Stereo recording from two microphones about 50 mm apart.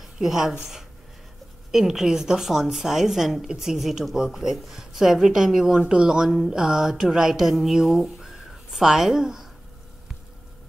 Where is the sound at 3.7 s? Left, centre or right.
Centre.